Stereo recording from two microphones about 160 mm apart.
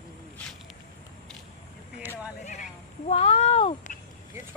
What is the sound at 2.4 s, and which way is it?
Horse, 50° left (ahead or behind).